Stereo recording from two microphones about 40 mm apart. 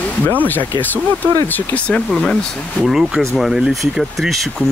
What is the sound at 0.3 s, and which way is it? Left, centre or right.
Speech, left.